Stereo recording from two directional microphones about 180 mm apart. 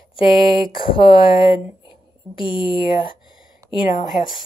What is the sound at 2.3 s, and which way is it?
Speech, 25° left (ahead or behind).